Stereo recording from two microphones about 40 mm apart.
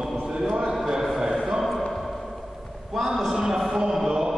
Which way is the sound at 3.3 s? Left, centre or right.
Centre.